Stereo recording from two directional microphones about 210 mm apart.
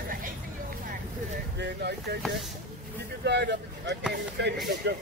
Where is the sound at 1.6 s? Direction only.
55° right (ahead or behind).